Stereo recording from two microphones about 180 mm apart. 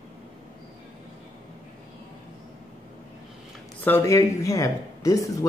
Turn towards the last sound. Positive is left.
turn(degrees=20)  # may be behind; listen again after turning